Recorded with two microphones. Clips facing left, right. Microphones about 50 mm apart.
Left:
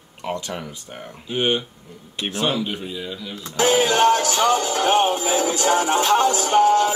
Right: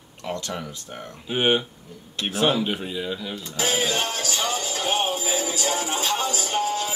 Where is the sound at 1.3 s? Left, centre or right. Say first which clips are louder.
Even; centre.